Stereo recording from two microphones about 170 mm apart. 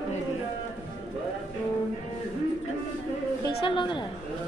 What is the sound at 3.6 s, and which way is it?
Speech, 30° left (ahead or behind).